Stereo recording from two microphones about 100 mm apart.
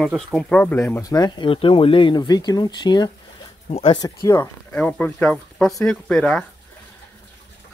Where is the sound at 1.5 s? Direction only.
65° left (ahead or behind); by 4.2 s 40° left (ahead or behind).